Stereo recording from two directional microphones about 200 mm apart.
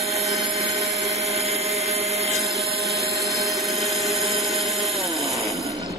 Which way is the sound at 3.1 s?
Centre (ahead or behind).